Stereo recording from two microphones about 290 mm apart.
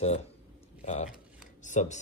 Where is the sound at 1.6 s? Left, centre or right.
Left.